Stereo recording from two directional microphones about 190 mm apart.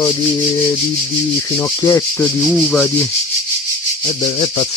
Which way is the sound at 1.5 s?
10° left (ahead or behind).